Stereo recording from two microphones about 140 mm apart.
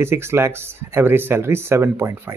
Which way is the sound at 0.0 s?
20° right (ahead or behind).